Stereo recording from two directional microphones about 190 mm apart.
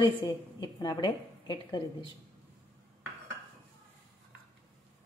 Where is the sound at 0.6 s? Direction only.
20° left (ahead or behind).